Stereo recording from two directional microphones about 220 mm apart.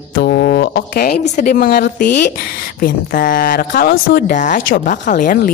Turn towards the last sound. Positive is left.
turn(degrees=35)  # may be behind; listen again after turning